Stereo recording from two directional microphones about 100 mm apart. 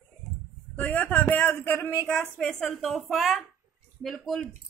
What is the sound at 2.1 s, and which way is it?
Speech, centre (ahead or behind).